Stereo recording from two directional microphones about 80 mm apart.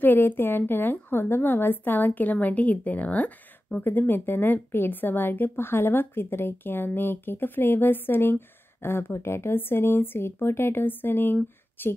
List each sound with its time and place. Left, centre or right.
0.0 s speech: left